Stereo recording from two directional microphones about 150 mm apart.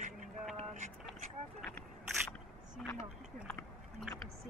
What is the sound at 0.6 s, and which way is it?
Vehicle, 50° right (ahead or behind).